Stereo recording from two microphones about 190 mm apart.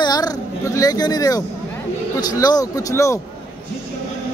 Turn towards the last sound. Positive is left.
turn(degrees=15)  # may be behind; listen again after turning